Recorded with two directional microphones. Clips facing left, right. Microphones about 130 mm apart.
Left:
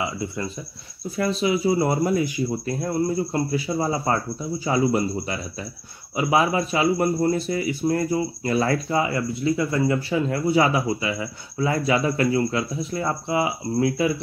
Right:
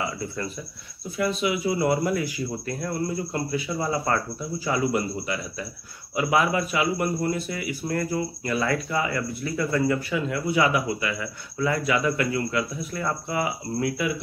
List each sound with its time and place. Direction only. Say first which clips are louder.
0.0 s speech: left 2 dB; 20° left (ahead or behind)
1.1 s speech: left 3 dB; 35° left (ahead or behind)